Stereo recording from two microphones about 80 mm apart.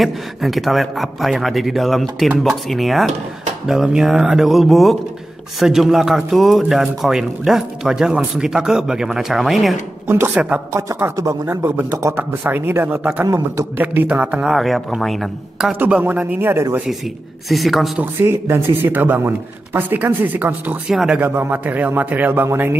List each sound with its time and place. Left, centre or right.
0.0 s a man's voice: centre
10.0 s speech: right
10.3 s speech: centre
11.5 s a man's voice: right; by 15.7 s centre
15.8 s a man's voice: right
17.5 s a man's voice: centre
18.2 s a man's voice: right
20.9 s a man's voice: centre
21.2 s a man's voice: right